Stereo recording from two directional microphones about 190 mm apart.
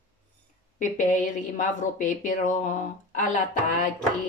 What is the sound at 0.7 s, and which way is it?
Speech, 40° left (ahead or behind).